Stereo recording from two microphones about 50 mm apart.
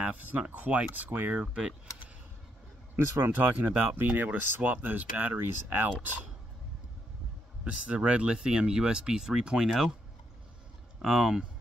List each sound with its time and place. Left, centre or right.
0.0 s speech: right
0.9 s speech: right
1.3 s speech: centre
3.3 s speech: right
7.6 s speech: right; by 9.8 s centre
11.0 s speech: centre